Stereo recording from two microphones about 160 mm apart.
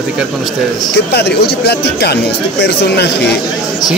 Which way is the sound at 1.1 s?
90° left.